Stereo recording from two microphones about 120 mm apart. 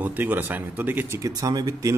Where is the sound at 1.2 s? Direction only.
30° right (ahead or behind).